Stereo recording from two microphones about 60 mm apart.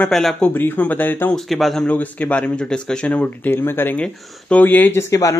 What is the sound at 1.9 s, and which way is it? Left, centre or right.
Speech, left.